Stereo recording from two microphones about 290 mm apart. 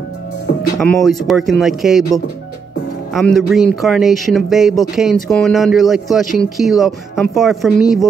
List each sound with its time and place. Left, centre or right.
0.7 s speech: centre
3.1 s speech: centre